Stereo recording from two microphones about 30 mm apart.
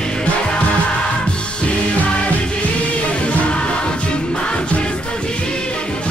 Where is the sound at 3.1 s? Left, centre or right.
Left.